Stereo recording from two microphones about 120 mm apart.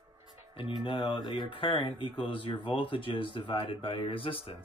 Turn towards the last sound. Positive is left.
turn(degrees=50)  # may be behind; listen again after turning